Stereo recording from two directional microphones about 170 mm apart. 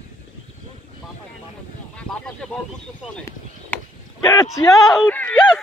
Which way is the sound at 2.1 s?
5° left (ahead or behind).